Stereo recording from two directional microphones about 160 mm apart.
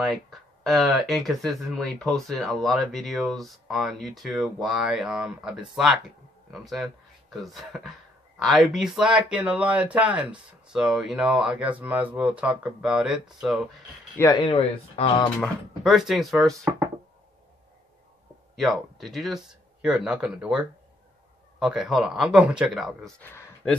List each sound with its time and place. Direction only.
0.0 s speech: centre (ahead or behind)
14.1 s speech: 20° left (ahead or behind)
14.4 s speech: 35° left (ahead or behind)
15.4 s speech: centre (ahead or behind)
18.6 s speech: centre (ahead or behind)
23.2 s a sound: 15° left (ahead or behind)